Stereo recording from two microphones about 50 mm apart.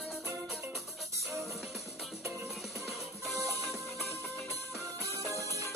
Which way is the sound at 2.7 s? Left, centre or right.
Right.